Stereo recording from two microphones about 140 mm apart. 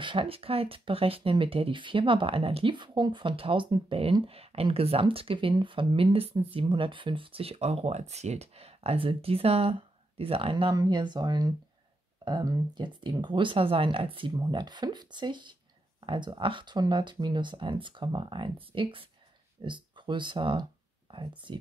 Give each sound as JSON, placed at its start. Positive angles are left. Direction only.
{"t": 0.0, "sound": "speech", "side_deg": -35}
{"t": 10.7, "sound": "speech", "side_deg": -30}
{"t": 21.1, "sound": "a sound", "side_deg": -35}
{"t": 21.5, "sound": "speech", "side_deg": -35}